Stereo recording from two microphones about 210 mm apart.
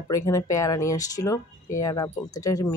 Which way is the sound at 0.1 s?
15° left (ahead or behind).